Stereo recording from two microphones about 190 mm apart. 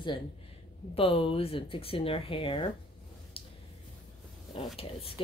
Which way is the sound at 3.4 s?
30° left (ahead or behind).